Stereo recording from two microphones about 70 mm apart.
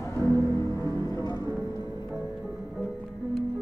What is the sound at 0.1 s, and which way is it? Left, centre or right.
Music, left.